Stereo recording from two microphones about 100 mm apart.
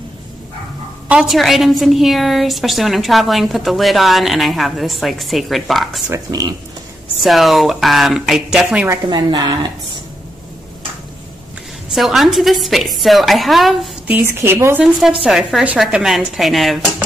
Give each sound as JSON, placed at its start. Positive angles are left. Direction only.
{"t": 1.0, "sound": "a sound", "side_deg": -10}
{"t": 1.3, "sound": "a woman's voice", "side_deg": 0}
{"t": 6.1, "sound": "speech", "side_deg": -40}
{"t": 7.2, "sound": "a woman's voice", "side_deg": 0}
{"t": 9.1, "sound": "speech", "side_deg": -45}
{"t": 11.9, "sound": "a woman's voice", "side_deg": 0}
{"t": 14.2, "sound": "a woman's voice", "side_deg": -25}
{"t": 14.8, "sound": "a woman's voice", "side_deg": -5}